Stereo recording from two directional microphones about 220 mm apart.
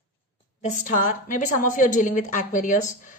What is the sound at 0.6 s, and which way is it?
A woman's voice, 30° left (ahead or behind).